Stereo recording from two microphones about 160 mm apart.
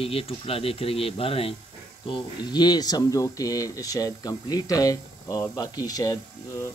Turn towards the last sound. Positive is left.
turn(degrees=20)  # may be behind; listen again after turning